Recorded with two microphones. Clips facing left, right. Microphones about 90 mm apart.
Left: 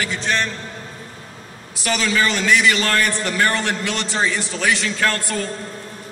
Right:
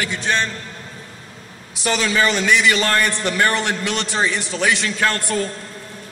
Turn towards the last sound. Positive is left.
turn(degrees=-15)  # may be behind; listen again after turning